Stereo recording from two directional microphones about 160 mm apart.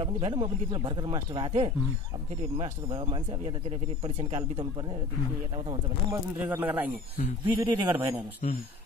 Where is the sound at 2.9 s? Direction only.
30° right (ahead or behind).